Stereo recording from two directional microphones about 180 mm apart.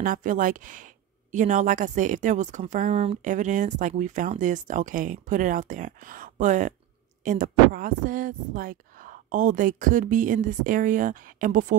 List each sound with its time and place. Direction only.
0.0 s speech: 45° right (ahead or behind)